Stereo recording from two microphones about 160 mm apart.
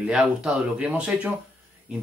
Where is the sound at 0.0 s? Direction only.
5° right (ahead or behind).